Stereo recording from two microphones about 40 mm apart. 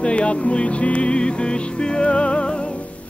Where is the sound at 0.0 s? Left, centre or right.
Left.